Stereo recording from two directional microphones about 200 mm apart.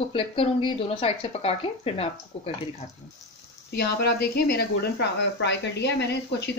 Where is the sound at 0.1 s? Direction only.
25° left (ahead or behind).